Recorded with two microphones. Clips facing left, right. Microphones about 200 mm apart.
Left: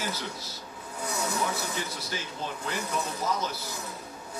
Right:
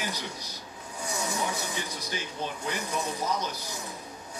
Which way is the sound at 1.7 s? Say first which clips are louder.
Left 1 dB; 15° right (ahead or behind).